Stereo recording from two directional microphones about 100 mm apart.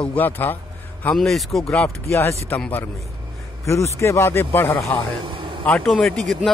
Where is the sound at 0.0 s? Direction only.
15° left (ahead or behind).